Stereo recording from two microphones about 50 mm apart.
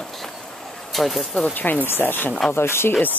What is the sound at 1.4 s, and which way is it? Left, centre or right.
Speech, left.